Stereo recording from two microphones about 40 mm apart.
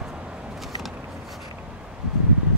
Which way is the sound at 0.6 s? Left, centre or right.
Centre.